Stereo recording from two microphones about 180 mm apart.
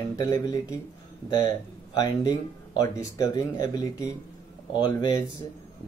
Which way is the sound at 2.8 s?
20° left (ahead or behind).